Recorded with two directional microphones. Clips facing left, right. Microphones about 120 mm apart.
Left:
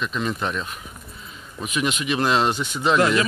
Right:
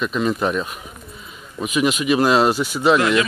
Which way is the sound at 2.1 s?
10° right (ahead or behind).